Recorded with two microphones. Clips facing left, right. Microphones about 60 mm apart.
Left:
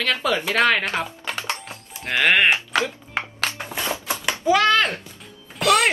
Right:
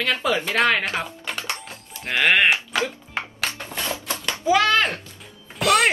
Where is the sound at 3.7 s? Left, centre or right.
Centre.